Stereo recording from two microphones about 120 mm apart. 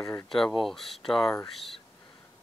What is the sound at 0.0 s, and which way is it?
Speech, 25° left (ahead or behind).